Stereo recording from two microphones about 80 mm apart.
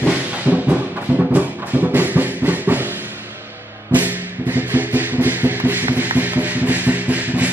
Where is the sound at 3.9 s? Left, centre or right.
Right.